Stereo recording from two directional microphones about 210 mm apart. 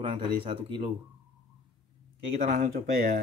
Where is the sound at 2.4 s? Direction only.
40° right (ahead or behind).